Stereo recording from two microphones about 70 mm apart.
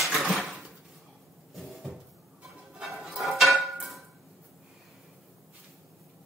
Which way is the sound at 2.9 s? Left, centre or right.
Centre.